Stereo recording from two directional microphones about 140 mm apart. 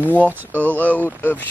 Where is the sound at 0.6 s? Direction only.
10° left (ahead or behind).